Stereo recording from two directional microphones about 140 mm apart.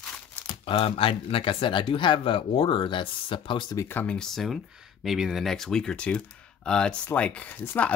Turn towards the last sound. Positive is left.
turn(degrees=10)  # may be behind; listen again after turning